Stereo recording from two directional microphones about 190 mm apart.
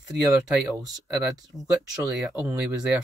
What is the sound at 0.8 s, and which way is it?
Speech, 20° right (ahead or behind).